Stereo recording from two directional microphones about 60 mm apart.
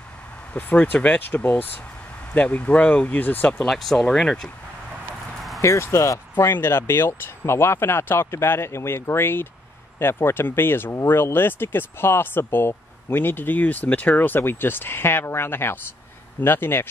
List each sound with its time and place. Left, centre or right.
0.5 s speech: left
3.6 s speech: centre
5.6 s speech: left
6.3 s speech: left